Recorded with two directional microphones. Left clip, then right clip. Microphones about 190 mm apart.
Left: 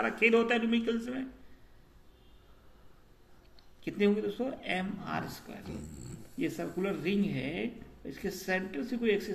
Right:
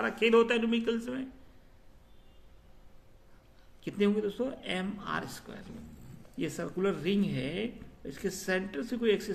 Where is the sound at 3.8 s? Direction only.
60° right (ahead or behind).